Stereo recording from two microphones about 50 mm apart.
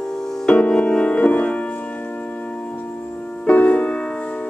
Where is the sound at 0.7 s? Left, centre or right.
Centre.